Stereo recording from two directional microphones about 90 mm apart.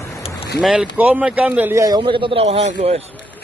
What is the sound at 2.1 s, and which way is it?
Speech, 85° right.